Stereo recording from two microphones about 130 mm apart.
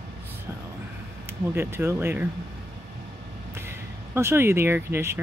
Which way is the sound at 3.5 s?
20° right (ahead or behind).